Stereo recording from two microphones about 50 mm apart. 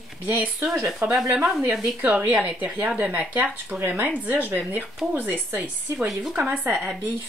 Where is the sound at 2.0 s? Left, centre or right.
Right.